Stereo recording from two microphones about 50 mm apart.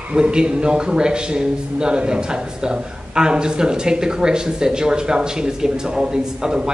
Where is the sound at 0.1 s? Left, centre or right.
Centre.